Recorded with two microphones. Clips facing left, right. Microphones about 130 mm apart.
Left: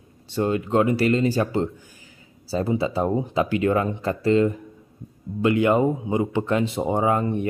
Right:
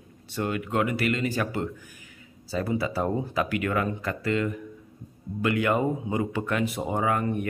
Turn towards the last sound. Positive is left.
turn(degrees=25)  # may be behind; listen again after turning